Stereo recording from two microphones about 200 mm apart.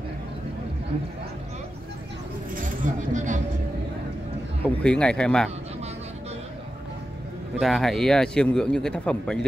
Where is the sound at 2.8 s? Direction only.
40° right (ahead or behind).